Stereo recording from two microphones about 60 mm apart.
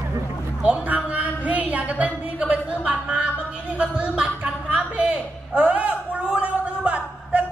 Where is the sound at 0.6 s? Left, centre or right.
Right.